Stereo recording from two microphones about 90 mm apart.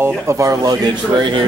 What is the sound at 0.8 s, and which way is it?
Speech, 60° right (ahead or behind).